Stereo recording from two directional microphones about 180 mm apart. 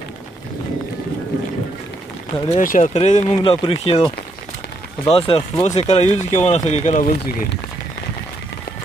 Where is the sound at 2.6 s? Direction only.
45° left (ahead or behind).